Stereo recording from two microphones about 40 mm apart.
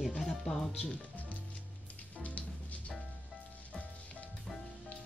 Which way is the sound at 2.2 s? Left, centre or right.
Left.